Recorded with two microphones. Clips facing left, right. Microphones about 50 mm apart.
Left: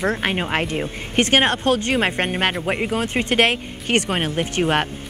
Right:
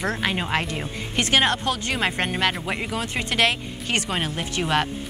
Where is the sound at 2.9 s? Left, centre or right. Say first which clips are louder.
Left 5 dB; left.